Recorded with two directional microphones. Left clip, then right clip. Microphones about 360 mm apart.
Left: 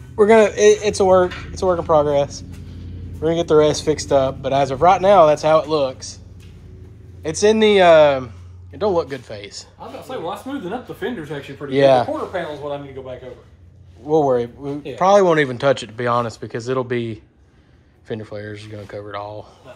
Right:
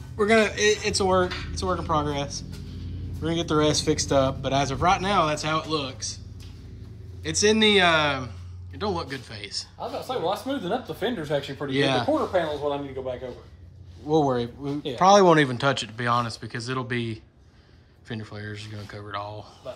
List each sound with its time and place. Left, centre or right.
0.2 s speech: centre
7.2 s speech: centre
11.7 s speech: centre
12.1 s speech: right
14.0 s speech: centre